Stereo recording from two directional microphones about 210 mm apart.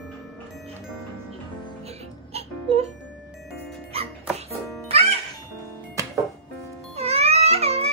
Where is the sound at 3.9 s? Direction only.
30° right (ahead or behind).